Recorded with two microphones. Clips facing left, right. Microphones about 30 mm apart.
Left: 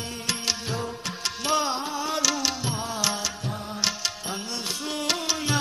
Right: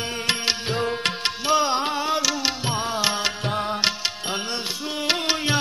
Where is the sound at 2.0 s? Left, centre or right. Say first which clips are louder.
Right 3 dB; right.